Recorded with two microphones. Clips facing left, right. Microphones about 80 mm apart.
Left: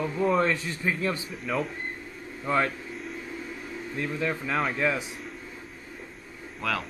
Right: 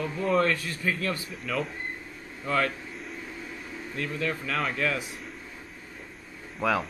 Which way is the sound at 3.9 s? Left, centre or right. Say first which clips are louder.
Left 1 dB; left.